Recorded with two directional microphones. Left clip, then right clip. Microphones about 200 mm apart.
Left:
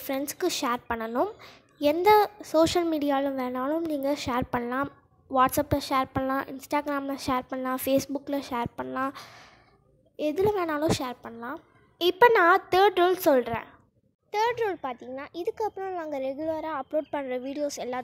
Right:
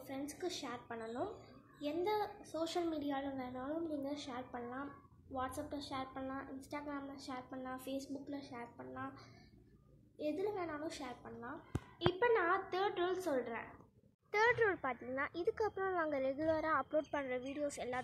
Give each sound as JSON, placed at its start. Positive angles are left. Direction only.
{"t": 0.1, "sound": "a woman's voice", "side_deg": 50}
{"t": 14.3, "sound": "a child's voice", "side_deg": 25}
{"t": 17.1, "sound": "a woman's voice", "side_deg": 35}